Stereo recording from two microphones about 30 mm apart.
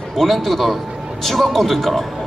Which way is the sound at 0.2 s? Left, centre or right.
Centre.